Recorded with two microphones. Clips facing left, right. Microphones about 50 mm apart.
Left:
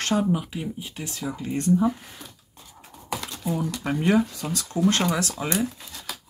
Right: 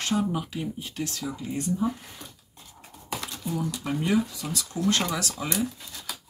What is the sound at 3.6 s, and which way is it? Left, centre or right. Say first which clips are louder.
Speech: left 4 dB; left.